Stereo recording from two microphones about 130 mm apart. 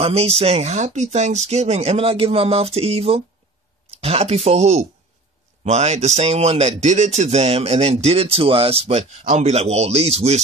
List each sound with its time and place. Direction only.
0.0 s speech: 50° right (ahead or behind)